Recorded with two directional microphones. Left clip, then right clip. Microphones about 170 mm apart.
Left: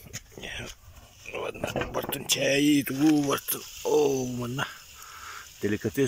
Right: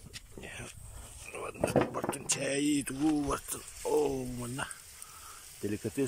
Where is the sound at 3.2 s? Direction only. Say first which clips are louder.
Left 7 dB; centre (ahead or behind).